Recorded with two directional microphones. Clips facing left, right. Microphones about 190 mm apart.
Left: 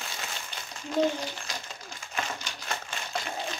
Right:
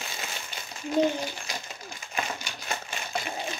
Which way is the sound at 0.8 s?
10° right (ahead or behind).